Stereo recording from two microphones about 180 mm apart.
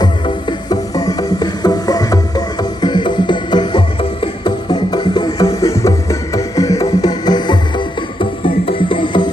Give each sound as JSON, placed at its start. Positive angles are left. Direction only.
{"t": 0.0, "sound": "music", "side_deg": 25}